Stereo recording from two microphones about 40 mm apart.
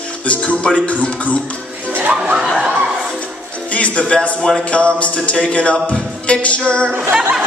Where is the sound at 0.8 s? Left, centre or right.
Left.